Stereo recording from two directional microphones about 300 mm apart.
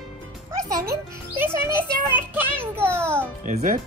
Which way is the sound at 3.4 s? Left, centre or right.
Right.